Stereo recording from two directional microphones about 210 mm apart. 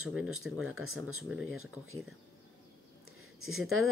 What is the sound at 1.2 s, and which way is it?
Speech, 5° right (ahead or behind).